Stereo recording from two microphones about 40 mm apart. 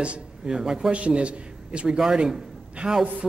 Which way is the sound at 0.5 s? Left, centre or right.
Centre.